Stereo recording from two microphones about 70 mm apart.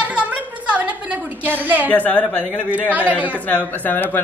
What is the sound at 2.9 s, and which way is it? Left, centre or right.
Speech, right.